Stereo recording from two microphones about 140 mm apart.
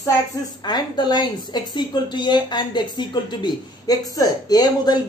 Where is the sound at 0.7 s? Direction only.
30° left (ahead or behind).